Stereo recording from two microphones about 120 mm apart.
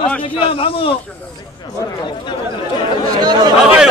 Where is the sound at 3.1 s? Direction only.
35° right (ahead or behind).